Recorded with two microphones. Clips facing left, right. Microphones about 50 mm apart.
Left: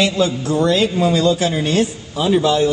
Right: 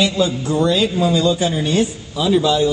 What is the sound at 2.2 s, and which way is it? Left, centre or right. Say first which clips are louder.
Speech: even; left.